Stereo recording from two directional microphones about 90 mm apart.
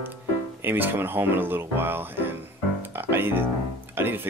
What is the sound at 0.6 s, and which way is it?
Speech, 25° right (ahead or behind).